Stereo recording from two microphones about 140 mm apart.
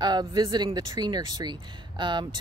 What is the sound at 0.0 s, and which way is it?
Speech, 30° right (ahead or behind).